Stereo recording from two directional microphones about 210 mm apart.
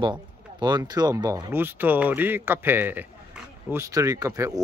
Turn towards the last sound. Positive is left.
turn(degrees=-15)  # may be behind; listen again after turning